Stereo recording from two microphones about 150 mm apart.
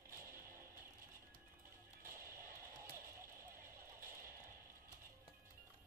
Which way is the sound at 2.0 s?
15° right (ahead or behind).